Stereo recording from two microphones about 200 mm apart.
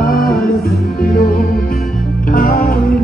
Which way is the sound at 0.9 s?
45° left (ahead or behind).